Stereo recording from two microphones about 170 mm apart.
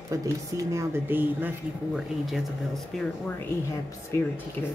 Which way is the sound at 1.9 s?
Centre (ahead or behind).